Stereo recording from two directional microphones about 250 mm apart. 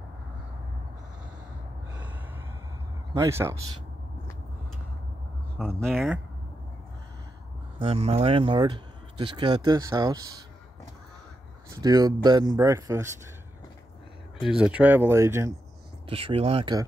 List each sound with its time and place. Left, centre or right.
3.1 s speech: centre
5.8 s speech: centre
7.8 s speech: right
11.7 s speech: centre
14.4 s speech: centre
16.1 s speech: right